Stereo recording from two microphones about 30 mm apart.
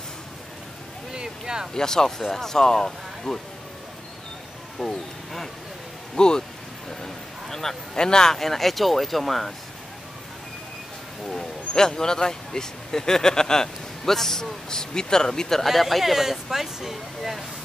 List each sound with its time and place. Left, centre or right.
1.7 s speech: centre
4.7 s speech: centre
6.1 s speech: left
6.9 s a sound: centre
8.4 s speech: centre
11.2 s speech: centre
15.6 s speech: centre